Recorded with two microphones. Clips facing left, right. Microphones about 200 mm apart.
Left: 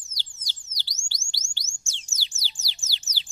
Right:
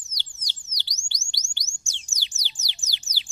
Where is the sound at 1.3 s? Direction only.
15° right (ahead or behind).